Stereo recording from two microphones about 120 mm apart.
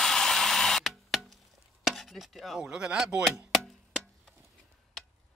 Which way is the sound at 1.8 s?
Centre (ahead or behind).